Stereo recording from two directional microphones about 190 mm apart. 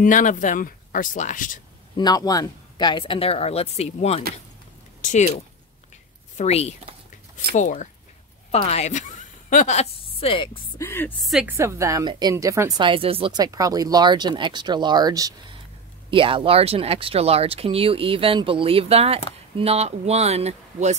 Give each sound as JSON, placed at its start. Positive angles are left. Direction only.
{"t": 0.0, "sound": "speech", "side_deg": 45}
{"t": 2.0, "sound": "a woman's voice", "side_deg": 20}
{"t": 10.8, "sound": "a woman's voice", "side_deg": 10}
{"t": 11.2, "sound": "a woman's voice", "side_deg": 0}
{"t": 11.5, "sound": "speech", "side_deg": -15}